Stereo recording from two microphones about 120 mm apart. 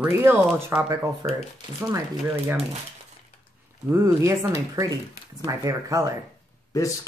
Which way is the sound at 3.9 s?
25° right (ahead or behind).